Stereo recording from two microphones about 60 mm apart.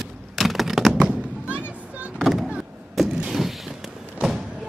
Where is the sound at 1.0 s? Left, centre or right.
Centre.